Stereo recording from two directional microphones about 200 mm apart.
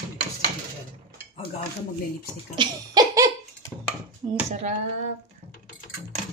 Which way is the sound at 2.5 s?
20° right (ahead or behind).